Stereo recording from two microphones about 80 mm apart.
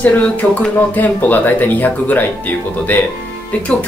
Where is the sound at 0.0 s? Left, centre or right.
Centre.